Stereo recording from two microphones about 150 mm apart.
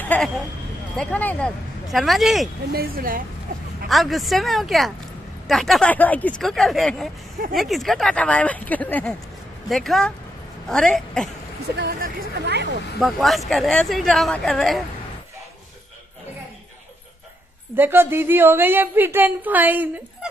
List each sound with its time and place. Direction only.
0.1 s speech: 10° left (ahead or behind)
2.7 s speech: 85° right
3.9 s speech: centre (ahead or behind)
11.7 s speech: 80° right
13.0 s speech: centre (ahead or behind)
17.7 s a woman's voice: 15° right (ahead or behind)